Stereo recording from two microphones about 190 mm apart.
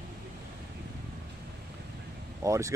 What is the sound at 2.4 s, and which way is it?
Speech, 15° right (ahead or behind).